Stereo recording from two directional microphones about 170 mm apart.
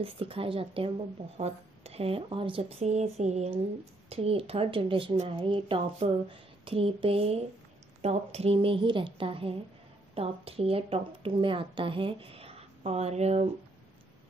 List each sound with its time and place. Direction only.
0.0 s a woman's voice: 30° right (ahead or behind)